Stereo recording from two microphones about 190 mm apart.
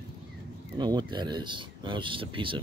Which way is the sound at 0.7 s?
20° right (ahead or behind).